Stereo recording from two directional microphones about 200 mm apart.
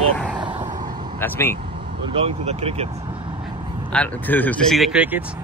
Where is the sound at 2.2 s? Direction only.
30° right (ahead or behind).